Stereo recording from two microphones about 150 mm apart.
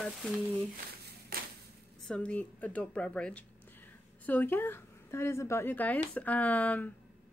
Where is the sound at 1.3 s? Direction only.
75° right (ahead or behind).